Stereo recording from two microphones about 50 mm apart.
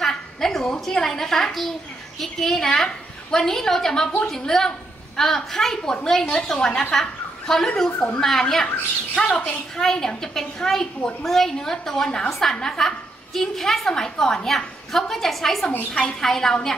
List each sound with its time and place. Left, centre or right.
0.0 s a sound: centre
0.9 s a woman's voice: centre
9.1 s a woman's voice: centre